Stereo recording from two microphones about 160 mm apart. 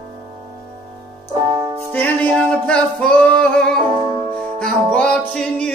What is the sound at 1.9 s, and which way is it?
Music, 10° left (ahead or behind).